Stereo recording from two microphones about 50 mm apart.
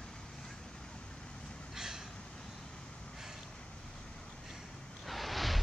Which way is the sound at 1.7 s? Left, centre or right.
Centre.